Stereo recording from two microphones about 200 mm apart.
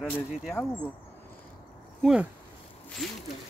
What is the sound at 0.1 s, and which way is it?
Speech, 10° left (ahead or behind).